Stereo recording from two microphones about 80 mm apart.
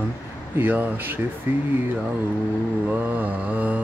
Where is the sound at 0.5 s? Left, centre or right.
Right.